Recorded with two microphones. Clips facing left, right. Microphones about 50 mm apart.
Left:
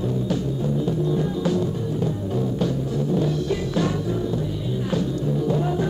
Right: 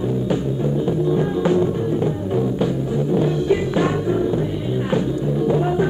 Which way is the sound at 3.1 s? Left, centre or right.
Right.